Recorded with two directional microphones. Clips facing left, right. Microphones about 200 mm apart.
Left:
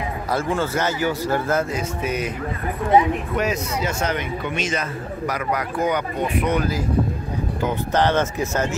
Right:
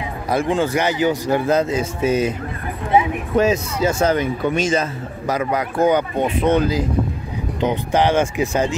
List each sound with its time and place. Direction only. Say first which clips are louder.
0.3 s speech: right 5 dB; 15° right (ahead or behind)
3.3 s a man's voice: right 10 dB; 30° right (ahead or behind)
7.6 s speech: right 3 dB; 15° right (ahead or behind)